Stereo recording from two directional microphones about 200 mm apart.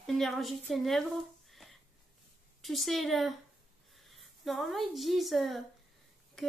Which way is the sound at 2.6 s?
Centre (ahead or behind).